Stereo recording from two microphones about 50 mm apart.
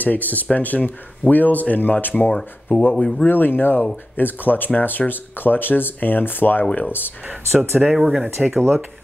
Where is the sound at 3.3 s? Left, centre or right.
Left.